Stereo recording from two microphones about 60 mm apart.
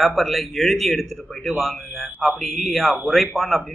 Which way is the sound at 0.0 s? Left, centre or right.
Centre.